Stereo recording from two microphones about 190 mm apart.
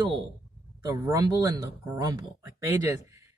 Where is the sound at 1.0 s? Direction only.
20° right (ahead or behind).